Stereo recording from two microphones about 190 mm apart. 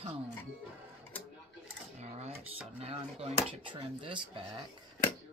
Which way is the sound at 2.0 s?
35° right (ahead or behind).